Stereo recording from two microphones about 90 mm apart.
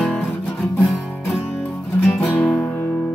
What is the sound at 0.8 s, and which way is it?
Music, centre (ahead or behind).